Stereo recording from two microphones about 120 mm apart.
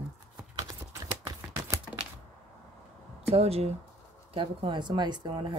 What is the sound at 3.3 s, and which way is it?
Speech, 60° right (ahead or behind).